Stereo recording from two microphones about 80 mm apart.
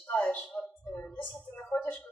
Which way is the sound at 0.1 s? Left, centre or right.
Centre.